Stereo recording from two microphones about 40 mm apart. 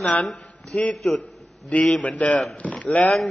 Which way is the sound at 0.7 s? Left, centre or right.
Left.